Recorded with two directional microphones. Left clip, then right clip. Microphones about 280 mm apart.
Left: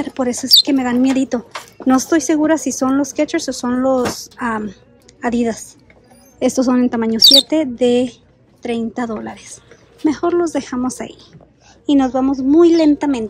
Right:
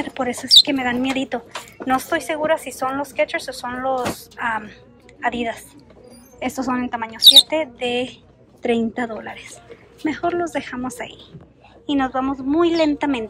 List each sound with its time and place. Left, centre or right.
0.0 s a woman's voice: centre